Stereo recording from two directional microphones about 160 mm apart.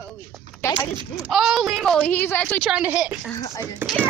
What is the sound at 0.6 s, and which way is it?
Speech, 15° left (ahead or behind).